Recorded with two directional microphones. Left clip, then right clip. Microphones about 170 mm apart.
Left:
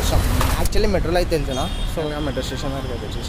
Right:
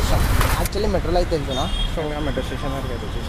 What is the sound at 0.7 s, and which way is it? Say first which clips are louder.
Speech: left 3 dB; 20° left (ahead or behind).